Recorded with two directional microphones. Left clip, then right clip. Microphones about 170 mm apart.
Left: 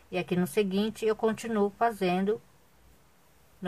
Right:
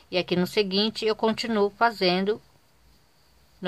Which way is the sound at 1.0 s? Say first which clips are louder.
Right 3 dB; 30° right (ahead or behind).